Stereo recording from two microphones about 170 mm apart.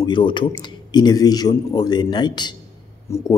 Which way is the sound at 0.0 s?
25° left (ahead or behind).